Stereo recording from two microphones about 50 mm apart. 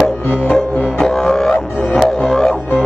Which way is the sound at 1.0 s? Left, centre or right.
Centre.